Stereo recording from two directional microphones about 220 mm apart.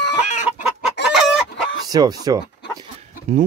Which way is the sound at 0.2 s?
35° left (ahead or behind).